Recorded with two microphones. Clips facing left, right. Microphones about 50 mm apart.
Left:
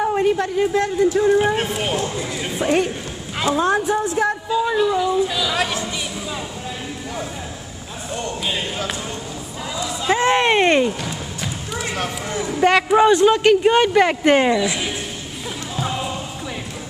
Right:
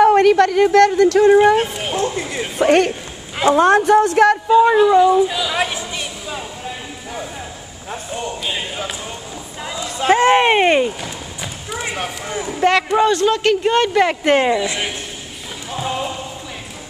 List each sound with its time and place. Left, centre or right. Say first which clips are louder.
0.0 s speech: right 8 dB; right
1.6 s a man's voice: right 1 dB; centre
2.6 s speech: right 6 dB; right
4.6 s speech: right 7 dB; right
5.3 s speech: right 1 dB; centre
8.1 s speech: even; centre
10.1 s speech: right 4 dB; right
10.4 s speech: right 2 dB; centre
12.5 s a man's voice: even; centre
15.7 s basketball bounce: right 3 dB; centre